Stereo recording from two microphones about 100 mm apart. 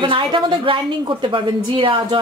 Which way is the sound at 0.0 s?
55° right (ahead or behind).